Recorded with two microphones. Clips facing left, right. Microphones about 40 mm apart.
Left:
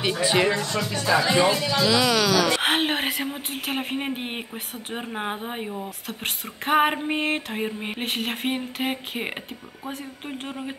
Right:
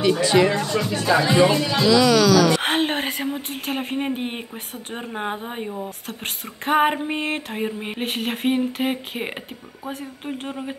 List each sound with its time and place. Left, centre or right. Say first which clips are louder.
0.2 s speech: right 2 dB; centre
0.6 s speech: right 4 dB; centre
1.9 s speech: right 6 dB; centre
5.7 s a sound: right 2 dB; centre